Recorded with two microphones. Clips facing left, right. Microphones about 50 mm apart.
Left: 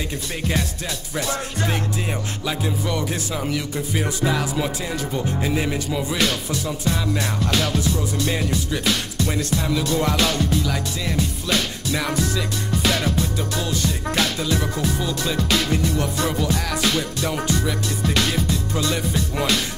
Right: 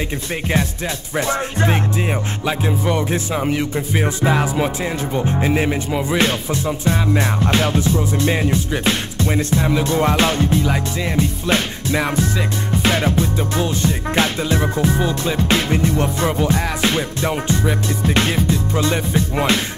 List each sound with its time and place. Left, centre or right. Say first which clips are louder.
1.1 s music: right 6 dB; right